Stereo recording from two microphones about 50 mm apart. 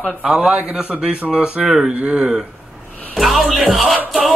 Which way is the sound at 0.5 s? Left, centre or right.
Right.